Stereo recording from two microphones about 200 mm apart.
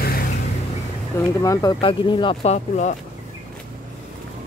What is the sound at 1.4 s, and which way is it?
Speech, 15° left (ahead or behind).